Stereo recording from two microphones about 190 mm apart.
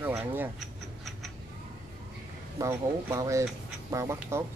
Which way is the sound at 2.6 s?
15° right (ahead or behind).